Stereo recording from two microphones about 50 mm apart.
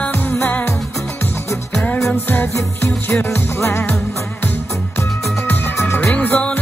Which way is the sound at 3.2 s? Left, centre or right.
Left.